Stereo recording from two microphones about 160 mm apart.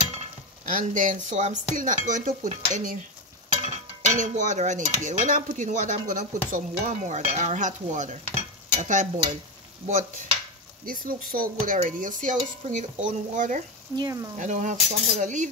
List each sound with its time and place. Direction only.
0.9 s cutlery: 50° right (ahead or behind)
10.9 s cutlery: 65° right (ahead or behind)
13.9 s speech: 20° right (ahead or behind)
14.3 s cutlery: 50° right (ahead or behind)